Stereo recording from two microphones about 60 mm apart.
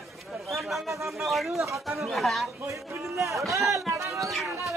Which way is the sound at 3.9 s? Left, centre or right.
Right.